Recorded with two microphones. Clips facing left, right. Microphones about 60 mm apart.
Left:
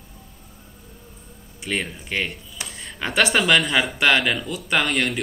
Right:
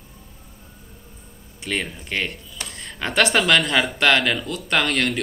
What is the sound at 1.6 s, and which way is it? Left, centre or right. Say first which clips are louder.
Speech: even; centre.